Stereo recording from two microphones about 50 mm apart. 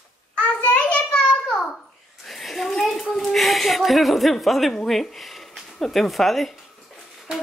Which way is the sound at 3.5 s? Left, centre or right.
Centre.